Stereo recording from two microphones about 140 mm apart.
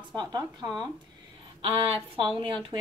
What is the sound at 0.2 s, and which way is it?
A woman's voice, 30° right (ahead or behind).